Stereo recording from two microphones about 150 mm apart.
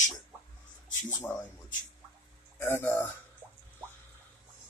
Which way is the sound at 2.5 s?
15° left (ahead or behind).